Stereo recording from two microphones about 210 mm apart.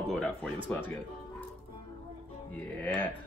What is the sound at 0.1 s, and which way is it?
Speech, centre (ahead or behind).